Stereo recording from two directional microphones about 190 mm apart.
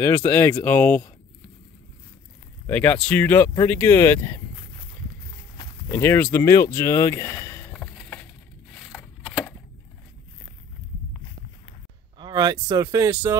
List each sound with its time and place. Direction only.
0.0 s speech: 15° left (ahead or behind)
2.6 s speech: 10° left (ahead or behind)
5.9 s speech: 10° left (ahead or behind)
7.7 s a sound: 5° left (ahead or behind)
12.2 s speech: 20° right (ahead or behind)